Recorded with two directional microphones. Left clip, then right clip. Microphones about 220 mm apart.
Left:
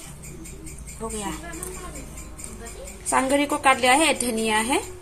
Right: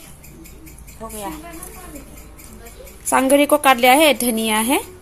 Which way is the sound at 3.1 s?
45° right (ahead or behind).